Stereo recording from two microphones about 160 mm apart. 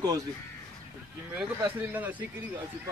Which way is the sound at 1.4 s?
10° right (ahead or behind).